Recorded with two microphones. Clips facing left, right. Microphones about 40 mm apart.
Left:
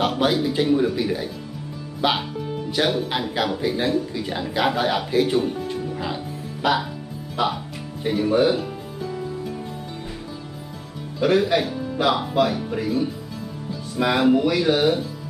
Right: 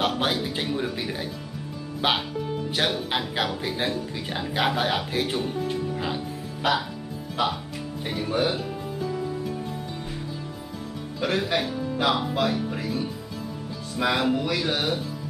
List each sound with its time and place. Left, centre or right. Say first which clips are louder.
0.2 s speech: left 6 dB; centre
6.1 s music: left 1 dB; centre
7.3 s speech: left 3 dB; centre
11.1 s speech: left 6 dB; centre